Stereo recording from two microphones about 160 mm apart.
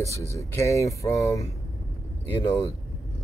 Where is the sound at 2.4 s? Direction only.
35° left (ahead or behind).